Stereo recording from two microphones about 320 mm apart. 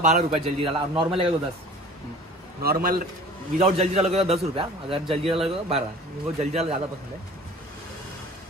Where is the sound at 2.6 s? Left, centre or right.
Right.